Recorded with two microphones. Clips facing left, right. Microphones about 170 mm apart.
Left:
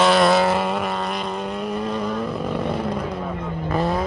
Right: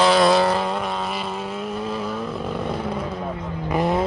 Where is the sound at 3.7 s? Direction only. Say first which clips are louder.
Right 2 dB; 15° right (ahead or behind).